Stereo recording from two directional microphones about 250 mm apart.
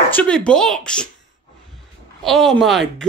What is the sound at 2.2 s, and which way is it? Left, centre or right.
Speech, centre.